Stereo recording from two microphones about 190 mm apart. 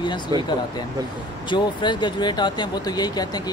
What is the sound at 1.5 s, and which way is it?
Speech, 25° left (ahead or behind).